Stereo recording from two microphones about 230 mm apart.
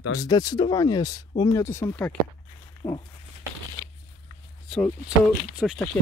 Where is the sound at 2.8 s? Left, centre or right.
Centre.